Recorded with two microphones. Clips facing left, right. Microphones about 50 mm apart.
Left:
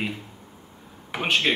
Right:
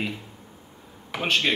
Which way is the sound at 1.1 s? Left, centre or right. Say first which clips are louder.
Left 1 dB; centre.